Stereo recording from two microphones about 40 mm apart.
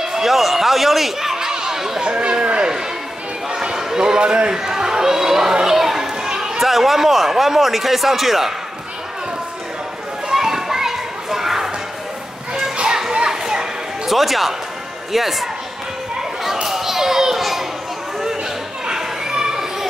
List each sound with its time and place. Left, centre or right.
0.0 s a sound: centre
6.6 s speech: centre
10.3 s children playing: centre
12.7 s children playing: right
13.1 s a sound: centre
14.1 s speech: centre
16.6 s children playing: centre
18.9 s children playing: centre